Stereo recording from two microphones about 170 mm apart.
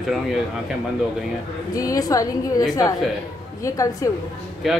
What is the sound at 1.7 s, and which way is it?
Speech, 20° left (ahead or behind).